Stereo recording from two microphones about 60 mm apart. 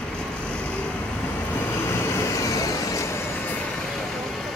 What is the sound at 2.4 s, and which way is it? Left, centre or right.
Vehicle, left.